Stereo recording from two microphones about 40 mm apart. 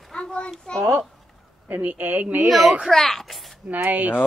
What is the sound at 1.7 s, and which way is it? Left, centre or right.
Speech, right.